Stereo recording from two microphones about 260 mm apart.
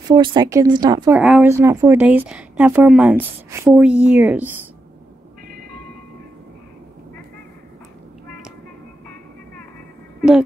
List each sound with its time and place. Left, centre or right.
0.1 s speech: centre